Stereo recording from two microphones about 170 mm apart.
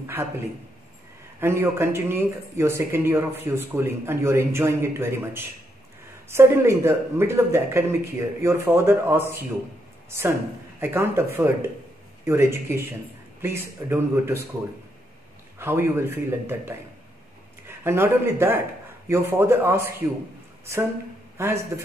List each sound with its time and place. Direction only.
0.0 s speech: 15° right (ahead or behind)
1.4 s speech: 15° right (ahead or behind)
15.6 s speech: 15° right (ahead or behind)
21.4 s speech: 15° right (ahead or behind)